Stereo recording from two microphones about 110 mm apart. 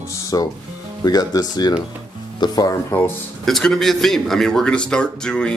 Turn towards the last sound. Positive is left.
turn(degrees=10)  # may be behind; listen again after turning